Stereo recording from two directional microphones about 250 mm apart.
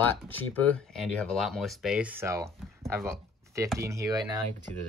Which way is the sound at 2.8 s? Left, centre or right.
Centre.